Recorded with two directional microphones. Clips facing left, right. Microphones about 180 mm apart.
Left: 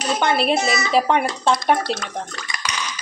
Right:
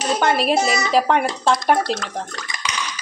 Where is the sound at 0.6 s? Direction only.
40° right (ahead or behind).